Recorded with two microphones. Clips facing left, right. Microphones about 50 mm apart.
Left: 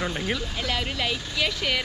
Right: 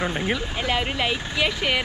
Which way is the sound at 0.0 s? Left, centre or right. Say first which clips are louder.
Right 3 dB; right.